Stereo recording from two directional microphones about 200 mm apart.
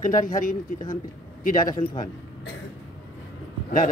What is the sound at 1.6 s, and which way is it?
Speech, 20° left (ahead or behind).